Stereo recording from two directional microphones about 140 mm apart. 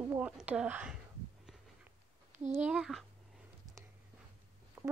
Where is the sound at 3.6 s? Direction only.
25° right (ahead or behind).